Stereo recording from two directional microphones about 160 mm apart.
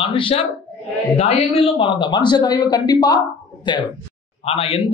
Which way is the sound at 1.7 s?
30° left (ahead or behind).